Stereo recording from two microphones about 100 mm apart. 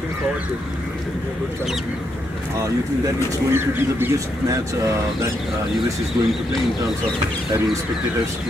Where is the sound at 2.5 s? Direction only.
35° right (ahead or behind).